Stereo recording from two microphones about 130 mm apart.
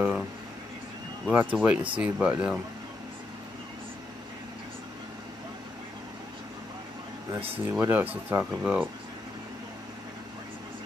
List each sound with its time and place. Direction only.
0.0 s speech: 5° right (ahead or behind)
1.3 s speech: 10° right (ahead or behind)
7.3 s speech: 45° right (ahead or behind)
7.8 s speech: 15° right (ahead or behind)